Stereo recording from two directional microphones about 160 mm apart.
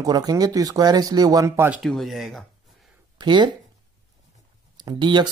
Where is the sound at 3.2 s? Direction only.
30° right (ahead or behind).